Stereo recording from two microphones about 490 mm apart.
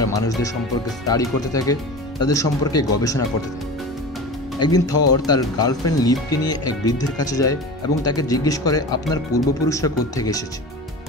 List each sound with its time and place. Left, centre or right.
0.0 s speech: centre
4.6 s speech: centre